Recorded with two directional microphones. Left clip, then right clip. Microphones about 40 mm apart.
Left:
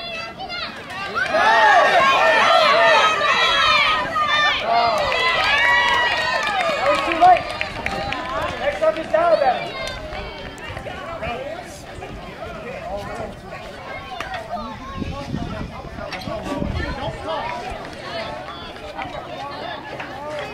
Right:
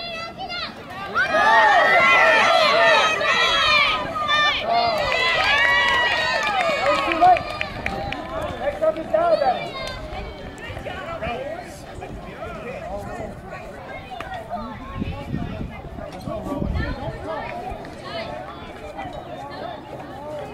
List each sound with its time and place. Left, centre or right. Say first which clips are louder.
0.1 s children playing: left 1 dB; centre
1.2 s crowd: left 1 dB; centre
1.9 s run: even; centre
4.0 s run: left 5 dB; centre
4.3 s run: right 1 dB; centre
8.4 s run: left 2 dB; left
9.1 s a sound: left 2 dB; centre
11.1 s chatter: left 1 dB; centre